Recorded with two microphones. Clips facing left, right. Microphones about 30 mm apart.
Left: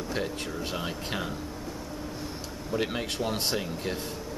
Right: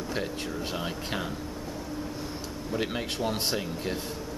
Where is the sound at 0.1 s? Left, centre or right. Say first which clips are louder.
Even; centre.